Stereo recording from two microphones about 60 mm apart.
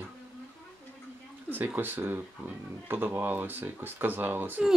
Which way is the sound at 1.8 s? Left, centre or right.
Right.